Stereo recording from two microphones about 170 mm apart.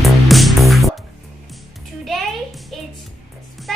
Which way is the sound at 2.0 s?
Centre (ahead or behind).